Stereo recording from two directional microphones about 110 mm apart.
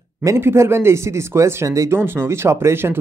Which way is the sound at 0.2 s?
25° right (ahead or behind).